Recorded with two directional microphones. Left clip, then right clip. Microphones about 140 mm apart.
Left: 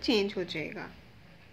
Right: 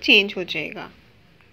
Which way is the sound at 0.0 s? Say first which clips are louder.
Right 12 dB; 25° right (ahead or behind).